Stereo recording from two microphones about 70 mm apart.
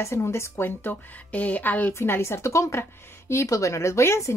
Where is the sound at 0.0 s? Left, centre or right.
Left.